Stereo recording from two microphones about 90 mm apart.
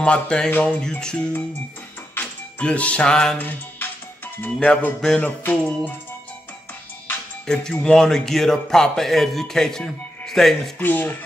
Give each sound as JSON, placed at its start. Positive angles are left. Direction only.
{"t": 0.0, "sound": "music", "side_deg": 10}
{"t": 2.1, "sound": "speech", "side_deg": 15}
{"t": 3.3, "sound": "music", "side_deg": 20}
{"t": 7.4, "sound": "speech", "side_deg": 10}
{"t": 10.8, "sound": "speech", "side_deg": 20}